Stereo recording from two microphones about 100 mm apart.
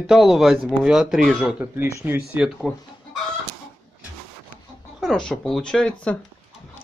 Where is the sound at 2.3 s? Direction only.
Centre (ahead or behind).